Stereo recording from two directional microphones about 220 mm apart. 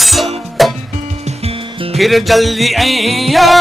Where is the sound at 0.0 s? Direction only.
Centre (ahead or behind).